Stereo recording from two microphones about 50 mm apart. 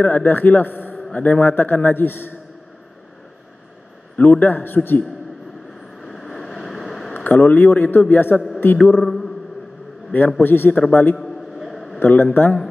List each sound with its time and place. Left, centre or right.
0.0 s a man's voice: left
4.2 s speech: left
5.9 s vehicle: centre
7.2 s a man's voice: left
9.0 s speech: centre
10.4 s a man's voice: left
11.1 s a sound: centre
12.0 s speech: left